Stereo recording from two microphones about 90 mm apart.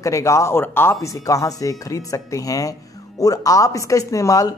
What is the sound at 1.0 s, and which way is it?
Speech, 35° left (ahead or behind).